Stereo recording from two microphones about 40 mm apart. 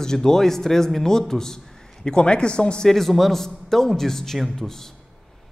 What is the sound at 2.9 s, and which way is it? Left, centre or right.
Speech, centre.